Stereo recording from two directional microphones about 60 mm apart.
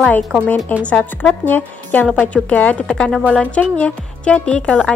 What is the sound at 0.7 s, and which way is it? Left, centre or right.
A woman's voice, left.